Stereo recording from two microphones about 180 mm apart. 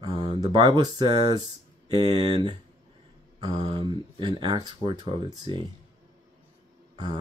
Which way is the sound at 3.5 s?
35° right (ahead or behind).